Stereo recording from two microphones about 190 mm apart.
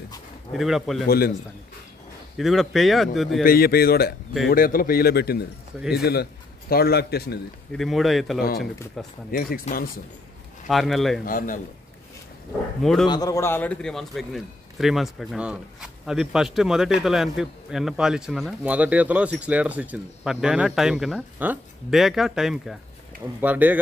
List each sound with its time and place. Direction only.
0.5 s a man's voice: centre (ahead or behind)
1.0 s speech: 55° left (ahead or behind)
2.3 s a man's voice: centre (ahead or behind)
3.4 s a man's voice: 55° left (ahead or behind)
7.7 s a man's voice: centre (ahead or behind)
9.3 s speech: 45° left (ahead or behind)
10.7 s a man's voice: centre (ahead or behind)
11.2 s speech: 45° left (ahead or behind)
12.8 s a man's voice: centre (ahead or behind)
13.1 s a man's voice: 20° left (ahead or behind); by 23.8 s 10° right (ahead or behind)